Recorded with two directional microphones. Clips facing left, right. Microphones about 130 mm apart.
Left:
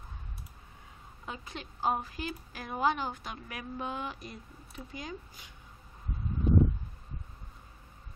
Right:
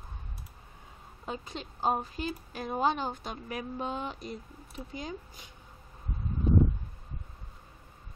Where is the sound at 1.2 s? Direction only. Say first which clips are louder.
Right 4 dB; 30° right (ahead or behind).